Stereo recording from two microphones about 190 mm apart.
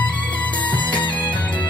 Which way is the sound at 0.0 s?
5° left (ahead or behind).